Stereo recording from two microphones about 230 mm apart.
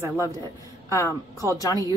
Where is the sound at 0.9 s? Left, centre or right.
Centre.